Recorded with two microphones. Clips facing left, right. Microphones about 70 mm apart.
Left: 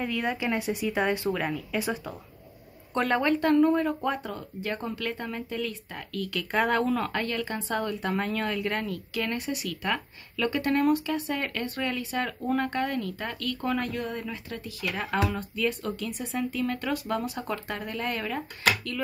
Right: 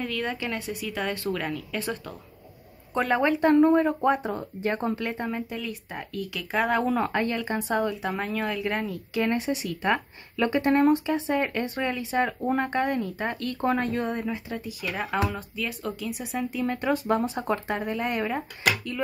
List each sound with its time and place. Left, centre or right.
0.0 s speech: centre
2.9 s a woman's voice: centre
3.2 s speech: centre
6.5 s speech: centre
6.8 s speech: centre
7.7 s speech: centre
9.1 s speech: right